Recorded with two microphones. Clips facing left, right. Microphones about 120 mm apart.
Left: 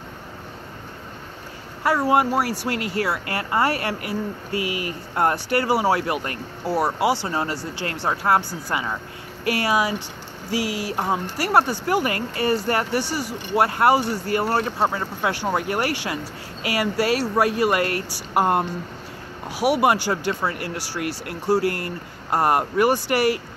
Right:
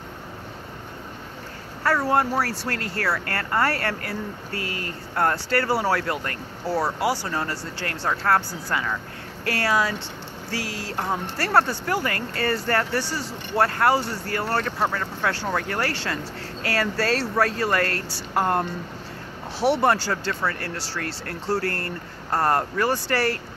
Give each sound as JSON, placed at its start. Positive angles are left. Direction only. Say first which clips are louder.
{"t": 1.8, "sound": "speech", "louder": "left 2 dB", "side_deg": 15}